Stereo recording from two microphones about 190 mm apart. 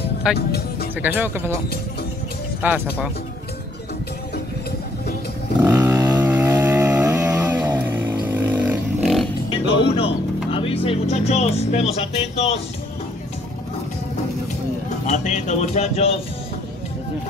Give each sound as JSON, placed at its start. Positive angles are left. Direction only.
{"t": 0.4, "sound": "music", "side_deg": 55}
{"t": 1.0, "sound": "speech", "side_deg": -10}
{"t": 2.6, "sound": "speech", "side_deg": -10}
{"t": 5.6, "sound": "a sound", "side_deg": -20}
{"t": 9.5, "sound": "speech", "side_deg": 30}
{"t": 15.0, "sound": "speech", "side_deg": 40}